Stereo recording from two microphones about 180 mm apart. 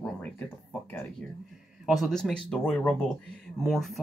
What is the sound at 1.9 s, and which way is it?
Speech, centre (ahead or behind).